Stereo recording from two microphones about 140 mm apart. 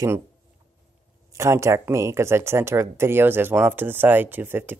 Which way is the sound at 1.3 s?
20° right (ahead or behind).